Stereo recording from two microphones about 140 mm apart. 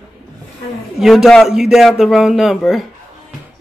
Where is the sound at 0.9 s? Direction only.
Centre (ahead or behind).